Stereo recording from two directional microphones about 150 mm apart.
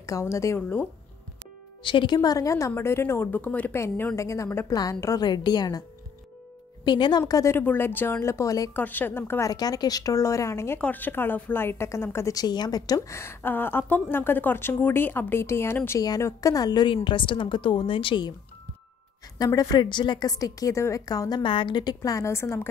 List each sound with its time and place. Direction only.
0.0 s a woman's voice: 20° left (ahead or behind)
1.8 s a woman's voice: 30° left (ahead or behind)
8.7 s a woman's voice: 10° left (ahead or behind); by 18.3 s 35° left (ahead or behind)
19.3 s a woman's voice: 25° left (ahead or behind)